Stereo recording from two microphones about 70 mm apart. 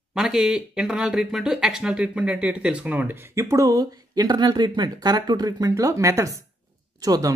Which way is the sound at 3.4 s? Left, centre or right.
Right.